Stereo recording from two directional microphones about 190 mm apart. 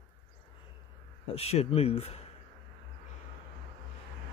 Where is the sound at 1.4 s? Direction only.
30° left (ahead or behind).